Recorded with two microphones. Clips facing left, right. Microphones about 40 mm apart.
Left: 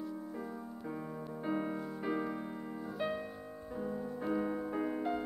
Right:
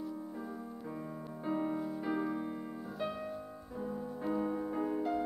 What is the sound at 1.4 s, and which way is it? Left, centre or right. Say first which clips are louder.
Music: right 2 dB; centre.